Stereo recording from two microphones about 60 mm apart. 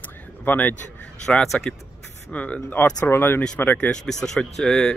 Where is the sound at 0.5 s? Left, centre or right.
Left.